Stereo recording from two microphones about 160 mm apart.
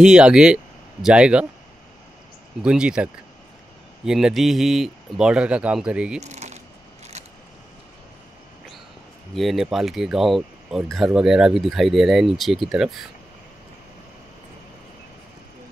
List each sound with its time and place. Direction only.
0.0 s speech: 5° right (ahead or behind)
2.6 s speech: 5° right (ahead or behind)
6.1 s a sound: 45° right (ahead or behind)
9.3 s speech: centre (ahead or behind)